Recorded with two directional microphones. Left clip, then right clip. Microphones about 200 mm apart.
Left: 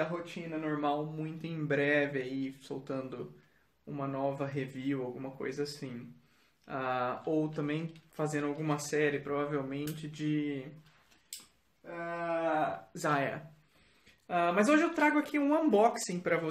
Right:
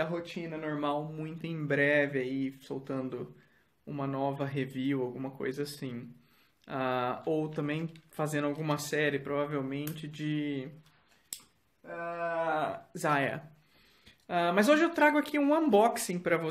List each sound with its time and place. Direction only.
0.2 s speech: 45° right (ahead or behind)
12.5 s speech: 35° right (ahead or behind)
14.2 s speech: 45° right (ahead or behind)